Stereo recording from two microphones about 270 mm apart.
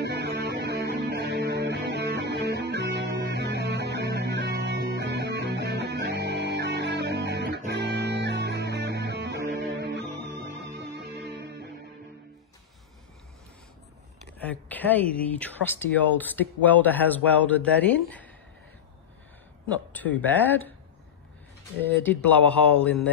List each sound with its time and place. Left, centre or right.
0.0 s music: right
14.4 s speech: centre
19.7 s speech: centre
21.8 s speech: centre